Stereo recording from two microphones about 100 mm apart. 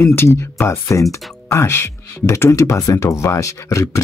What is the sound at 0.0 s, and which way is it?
Speech, 25° left (ahead or behind).